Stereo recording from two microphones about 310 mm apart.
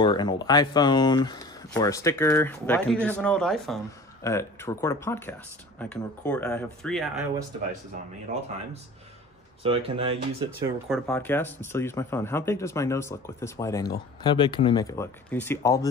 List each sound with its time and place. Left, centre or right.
0.0 s speech: centre
9.6 s speech: centre
10.9 s speech: centre